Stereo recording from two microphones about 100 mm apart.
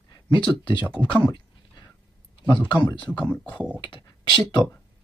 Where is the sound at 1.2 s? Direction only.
45° left (ahead or behind).